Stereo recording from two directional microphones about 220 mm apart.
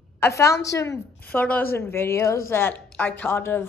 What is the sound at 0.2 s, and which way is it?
Speech, 15° left (ahead or behind).